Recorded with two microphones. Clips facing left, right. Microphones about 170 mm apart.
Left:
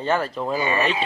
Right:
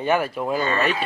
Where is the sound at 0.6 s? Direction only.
15° left (ahead or behind).